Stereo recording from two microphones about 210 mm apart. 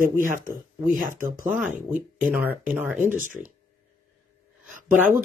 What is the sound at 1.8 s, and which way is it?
Speech, 40° right (ahead or behind).